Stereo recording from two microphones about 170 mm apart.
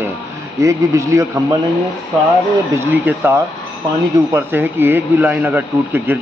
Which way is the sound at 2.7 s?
15° right (ahead or behind).